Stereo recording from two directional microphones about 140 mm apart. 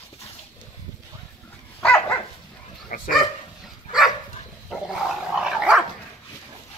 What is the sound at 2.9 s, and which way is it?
Dog, 75° left (ahead or behind).